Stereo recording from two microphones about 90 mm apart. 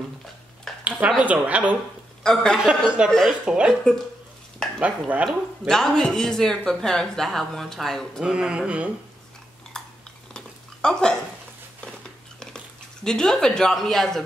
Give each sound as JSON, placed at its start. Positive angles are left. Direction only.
{"t": 0.8, "sound": "a sound", "side_deg": -15}
{"t": 1.2, "sound": "speech", "side_deg": -15}
{"t": 4.7, "sound": "speech", "side_deg": -15}
{"t": 5.7, "sound": "speech", "side_deg": 5}
{"t": 8.2, "sound": "speech", "side_deg": -10}
{"t": 9.8, "sound": "a sound", "side_deg": 5}
{"t": 12.4, "sound": "speech", "side_deg": 10}